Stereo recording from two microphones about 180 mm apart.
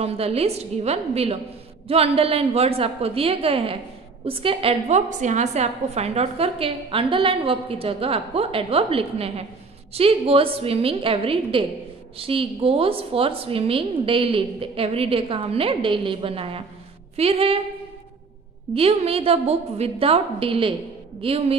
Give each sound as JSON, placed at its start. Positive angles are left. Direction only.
{"t": 0.0, "sound": "a woman's voice", "side_deg": -35}
{"t": 18.7, "sound": "a woman's voice", "side_deg": -35}